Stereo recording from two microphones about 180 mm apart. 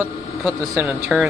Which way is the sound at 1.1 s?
5° right (ahead or behind).